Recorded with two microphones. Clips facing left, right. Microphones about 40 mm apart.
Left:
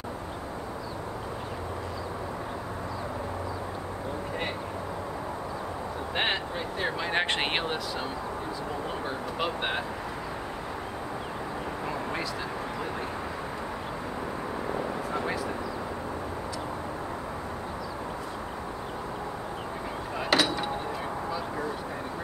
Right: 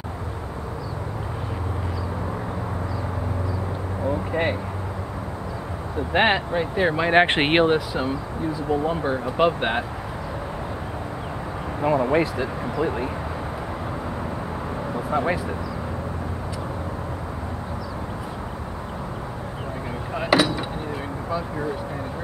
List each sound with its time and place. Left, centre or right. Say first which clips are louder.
6.1 s speech: right 10 dB; right
8.8 s speech: right 9 dB; right
11.8 s speech: right 16 dB; right
15.0 s speech: right 7 dB; right
20.2 s a sound: right 6 dB; centre